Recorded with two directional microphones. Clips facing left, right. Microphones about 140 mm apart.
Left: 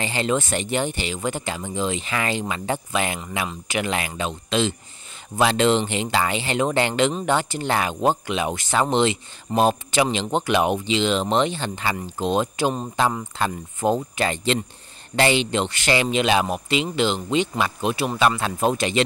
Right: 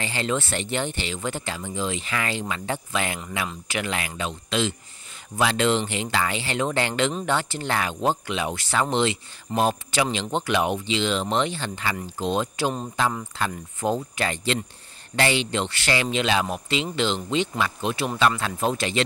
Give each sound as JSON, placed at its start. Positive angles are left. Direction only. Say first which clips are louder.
{"t": 0.0, "sound": "speech", "louder": "left 3 dB", "side_deg": 20}